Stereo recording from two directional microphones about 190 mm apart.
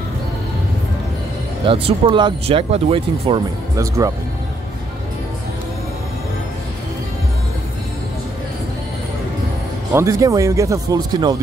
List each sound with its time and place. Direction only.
1.7 s speech: 30° right (ahead or behind)
3.7 s speech: 15° right (ahead or behind)
9.9 s speech: 15° right (ahead or behind)